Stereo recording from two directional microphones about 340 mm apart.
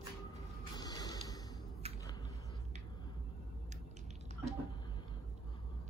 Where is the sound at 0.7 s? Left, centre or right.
Centre.